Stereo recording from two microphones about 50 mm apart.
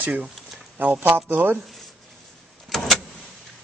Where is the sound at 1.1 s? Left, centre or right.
Right.